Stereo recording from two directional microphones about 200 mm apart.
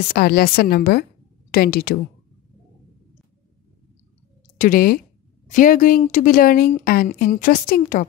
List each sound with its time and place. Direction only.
0.1 s speech: 50° left (ahead or behind)
4.6 s speech: 45° left (ahead or behind)